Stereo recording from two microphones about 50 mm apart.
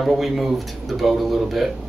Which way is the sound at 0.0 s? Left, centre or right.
Centre.